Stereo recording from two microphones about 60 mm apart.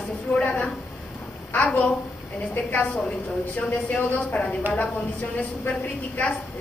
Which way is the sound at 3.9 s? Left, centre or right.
Left.